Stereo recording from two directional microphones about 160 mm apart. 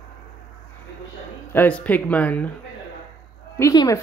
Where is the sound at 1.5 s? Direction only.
10° left (ahead or behind).